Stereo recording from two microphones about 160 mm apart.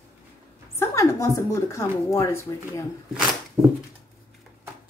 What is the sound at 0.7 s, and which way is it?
Speech, 20° left (ahead or behind).